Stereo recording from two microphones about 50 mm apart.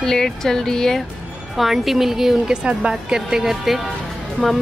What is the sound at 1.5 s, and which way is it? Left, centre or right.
A woman's voice, centre.